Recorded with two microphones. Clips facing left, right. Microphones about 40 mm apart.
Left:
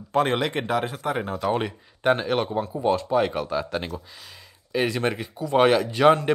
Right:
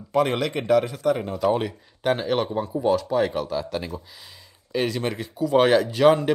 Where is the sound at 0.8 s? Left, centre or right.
Left.